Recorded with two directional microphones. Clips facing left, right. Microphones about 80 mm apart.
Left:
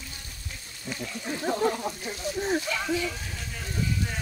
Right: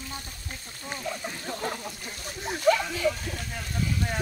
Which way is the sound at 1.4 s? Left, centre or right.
Left.